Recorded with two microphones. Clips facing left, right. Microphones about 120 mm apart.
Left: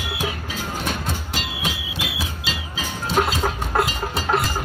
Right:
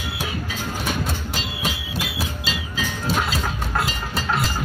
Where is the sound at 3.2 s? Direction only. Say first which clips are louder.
Left 4 dB; 35° left (ahead or behind).